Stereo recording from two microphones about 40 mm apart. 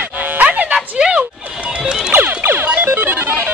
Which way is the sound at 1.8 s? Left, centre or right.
Centre.